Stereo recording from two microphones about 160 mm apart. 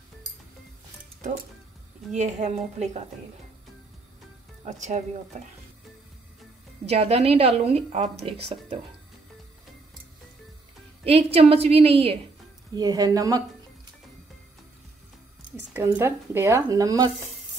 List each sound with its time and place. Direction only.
2.1 s a woman's voice: 45° right (ahead or behind)
4.6 s a woman's voice: 50° right (ahead or behind)
6.9 s speech: 40° right (ahead or behind)
11.1 s speech: 40° right (ahead or behind)
12.7 s speech: 25° right (ahead or behind)
15.7 s speech: 15° right (ahead or behind)